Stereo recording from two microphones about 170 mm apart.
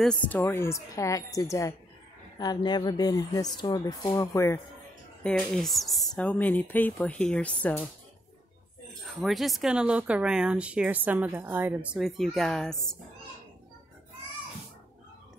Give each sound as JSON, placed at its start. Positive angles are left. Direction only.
{"t": 0.0, "sound": "speech", "side_deg": 5}
{"t": 5.2, "sound": "speech", "side_deg": 5}
{"t": 9.0, "sound": "speech", "side_deg": 0}